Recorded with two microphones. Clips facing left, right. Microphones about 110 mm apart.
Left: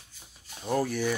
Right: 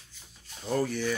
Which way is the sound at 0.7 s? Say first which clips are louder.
Left 1 dB; 10° left (ahead or behind).